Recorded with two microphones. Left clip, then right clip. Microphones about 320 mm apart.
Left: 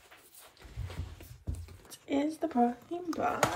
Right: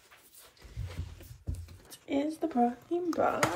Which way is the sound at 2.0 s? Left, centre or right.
Centre.